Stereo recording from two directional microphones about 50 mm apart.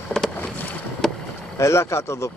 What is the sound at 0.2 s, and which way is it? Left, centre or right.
Boat, centre.